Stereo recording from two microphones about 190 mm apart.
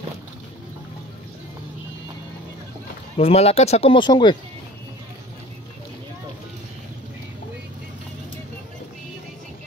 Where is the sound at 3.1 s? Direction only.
30° left (ahead or behind).